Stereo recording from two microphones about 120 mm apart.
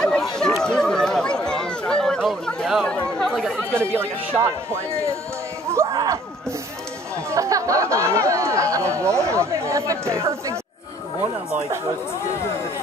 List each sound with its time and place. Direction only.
0.0 s chatter: 5° left (ahead or behind)
3.9 s speech: 20° right (ahead or behind)
7.2 s speech: 25° right (ahead or behind)